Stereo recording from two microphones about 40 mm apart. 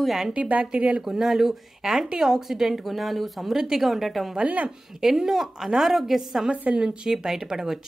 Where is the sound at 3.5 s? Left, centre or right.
Centre.